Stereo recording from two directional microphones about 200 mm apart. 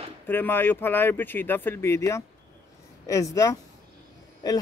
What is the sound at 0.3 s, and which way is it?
A man's voice, 10° left (ahead or behind).